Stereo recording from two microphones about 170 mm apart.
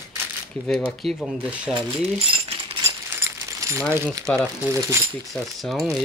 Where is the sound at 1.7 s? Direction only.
30° right (ahead or behind).